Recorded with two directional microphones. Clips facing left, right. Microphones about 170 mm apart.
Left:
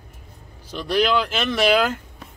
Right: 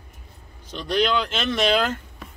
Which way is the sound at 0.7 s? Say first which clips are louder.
Left 2 dB; 5° left (ahead or behind).